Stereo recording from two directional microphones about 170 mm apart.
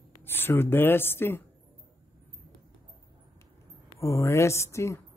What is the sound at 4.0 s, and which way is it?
Speech, 15° left (ahead or behind).